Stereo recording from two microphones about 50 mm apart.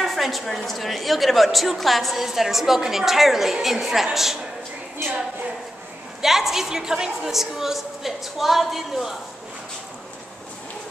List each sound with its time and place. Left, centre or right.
0.0 s a woman's voice: centre
6.2 s a woman's voice: centre